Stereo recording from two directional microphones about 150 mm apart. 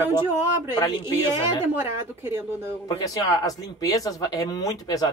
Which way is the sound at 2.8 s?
25° left (ahead or behind).